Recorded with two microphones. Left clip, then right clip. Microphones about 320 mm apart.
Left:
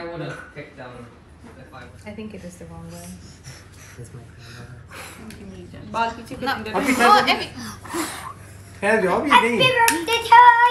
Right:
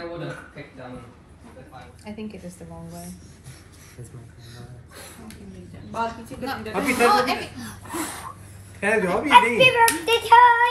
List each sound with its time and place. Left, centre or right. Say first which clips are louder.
2.9 s hands: even; centre
4.9 s speech: left 5 dB; centre
10.0 s hands: left 3 dB; right